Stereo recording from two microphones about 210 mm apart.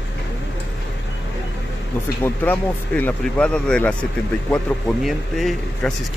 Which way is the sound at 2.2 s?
10° left (ahead or behind).